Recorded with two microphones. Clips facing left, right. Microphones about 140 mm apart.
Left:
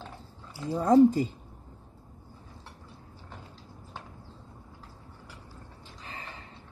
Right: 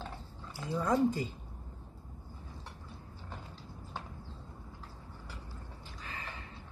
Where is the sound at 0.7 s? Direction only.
35° left (ahead or behind).